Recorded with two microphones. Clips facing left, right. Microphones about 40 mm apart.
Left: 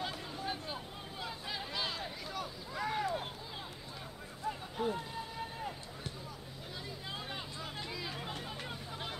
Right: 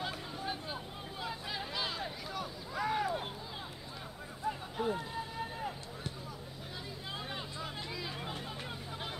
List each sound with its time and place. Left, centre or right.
0.0 s vehicle: centre
4.5 s a sound: centre
7.2 s hubbub: centre